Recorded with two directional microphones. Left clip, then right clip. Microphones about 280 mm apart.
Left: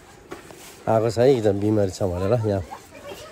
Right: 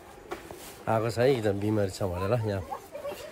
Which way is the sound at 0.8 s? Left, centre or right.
Centre.